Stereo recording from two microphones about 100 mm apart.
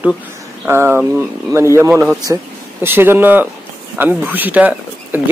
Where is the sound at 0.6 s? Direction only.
25° right (ahead or behind).